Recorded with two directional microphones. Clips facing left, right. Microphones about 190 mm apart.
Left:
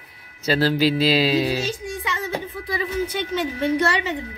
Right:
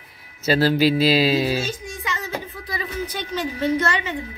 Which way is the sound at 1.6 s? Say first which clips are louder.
Left 2 dB; 35° left (ahead or behind).